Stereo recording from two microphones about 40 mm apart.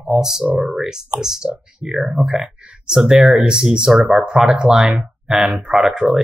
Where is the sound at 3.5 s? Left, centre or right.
Centre.